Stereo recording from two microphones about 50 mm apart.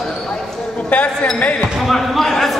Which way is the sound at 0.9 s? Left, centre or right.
Left.